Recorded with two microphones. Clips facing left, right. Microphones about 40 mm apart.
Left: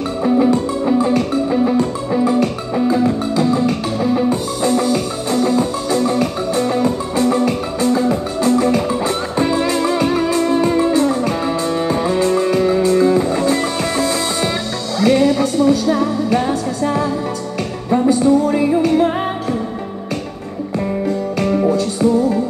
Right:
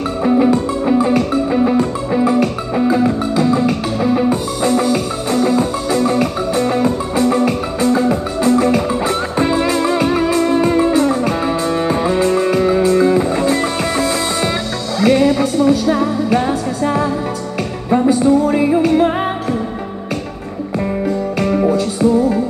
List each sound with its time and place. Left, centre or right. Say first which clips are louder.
0.2 s music: right 1 dB; right
4.3 s music: right 1 dB; right
21.4 s music: right 1 dB; right